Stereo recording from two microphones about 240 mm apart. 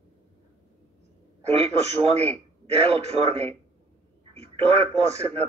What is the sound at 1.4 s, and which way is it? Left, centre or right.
A man's voice, right.